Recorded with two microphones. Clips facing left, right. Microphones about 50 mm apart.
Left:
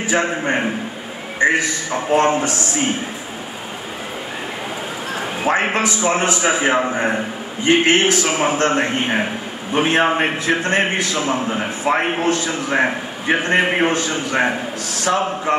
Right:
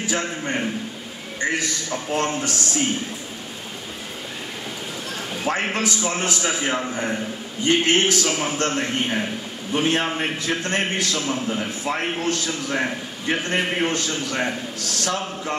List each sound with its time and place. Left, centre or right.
0.0 s a man's voice: left
0.4 s a man's voice: left
1.4 s a man's voice: centre
5.1 s a man's voice: left
11.5 s a man's voice: left